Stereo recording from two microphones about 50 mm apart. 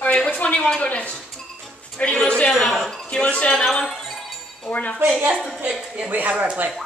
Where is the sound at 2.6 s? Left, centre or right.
Centre.